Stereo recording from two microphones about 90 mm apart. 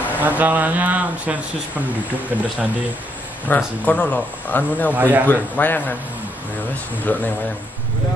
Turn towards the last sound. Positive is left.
turn(degrees=20)  # may be behind; listen again after turning